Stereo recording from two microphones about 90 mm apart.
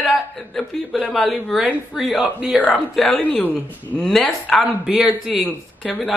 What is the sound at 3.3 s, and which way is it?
Speech, 20° left (ahead or behind).